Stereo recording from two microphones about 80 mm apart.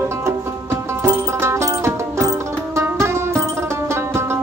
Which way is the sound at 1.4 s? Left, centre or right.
Right.